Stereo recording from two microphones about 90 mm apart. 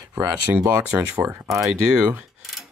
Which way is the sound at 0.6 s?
25° right (ahead or behind).